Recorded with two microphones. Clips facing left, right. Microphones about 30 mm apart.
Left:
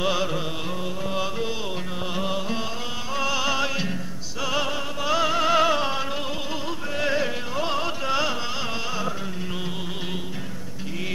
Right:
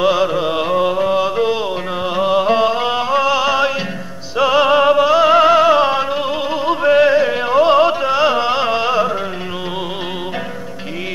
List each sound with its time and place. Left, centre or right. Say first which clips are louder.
0.0 s music: right 10 dB; centre
0.5 s music: right 15 dB; right
1.1 s music: right 12 dB; right
2.4 s a sound: right 15 dB; right
3.2 s music: right 8 dB; right
4.4 s music: right 14 dB; right
4.7 s music: right 19 dB; right
5.0 s music: right 12 dB; right
6.7 s music: right 17 dB; right
7.1 s music: right 11 dB; centre
7.4 s music: right 15 dB; right